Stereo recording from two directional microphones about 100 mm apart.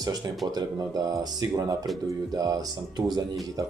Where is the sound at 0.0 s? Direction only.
35° right (ahead or behind).